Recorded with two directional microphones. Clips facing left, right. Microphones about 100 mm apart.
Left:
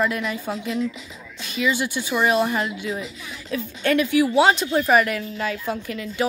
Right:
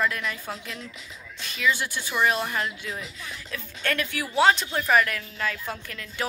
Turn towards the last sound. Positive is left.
turn(degrees=10)  # may be behind; listen again after turning